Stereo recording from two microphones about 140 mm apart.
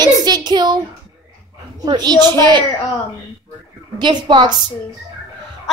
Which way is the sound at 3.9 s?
35° right (ahead or behind).